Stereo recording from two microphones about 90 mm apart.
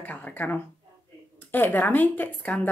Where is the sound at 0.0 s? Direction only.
20° left (ahead or behind).